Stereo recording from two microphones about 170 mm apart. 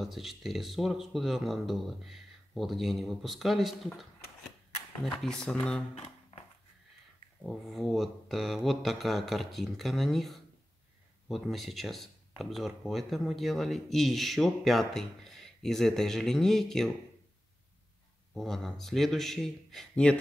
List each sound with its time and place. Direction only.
0.0 s speech: centre (ahead or behind)
5.9 s a sound: 35° left (ahead or behind)
7.4 s speech: centre (ahead or behind)
18.3 s speech: centre (ahead or behind)